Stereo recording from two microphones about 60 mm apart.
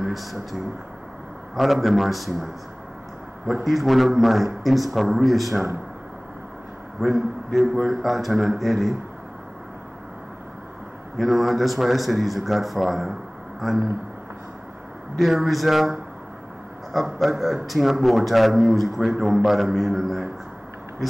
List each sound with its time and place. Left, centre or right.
0.0 s speech: centre
7.0 s speech: centre
11.1 s speech: centre
15.1 s speech: centre